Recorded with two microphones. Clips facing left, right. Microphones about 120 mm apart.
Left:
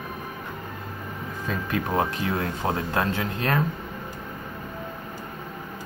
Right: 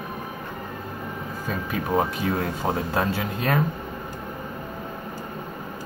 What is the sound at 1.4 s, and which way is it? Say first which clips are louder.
Speech: left 1 dB; 5° right (ahead or behind).